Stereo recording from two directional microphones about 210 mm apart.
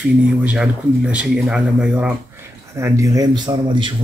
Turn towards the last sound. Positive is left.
turn(degrees=-20)  # may be behind; listen again after turning